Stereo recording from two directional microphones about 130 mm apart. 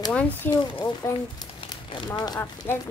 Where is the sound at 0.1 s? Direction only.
10° left (ahead or behind).